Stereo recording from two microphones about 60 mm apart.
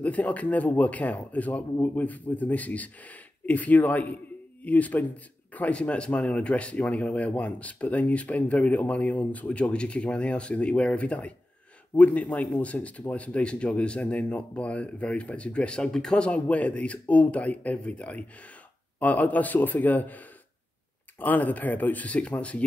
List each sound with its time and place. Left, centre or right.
0.0 s speech: left